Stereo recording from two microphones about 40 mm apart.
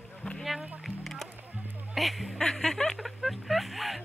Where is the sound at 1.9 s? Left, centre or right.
Centre.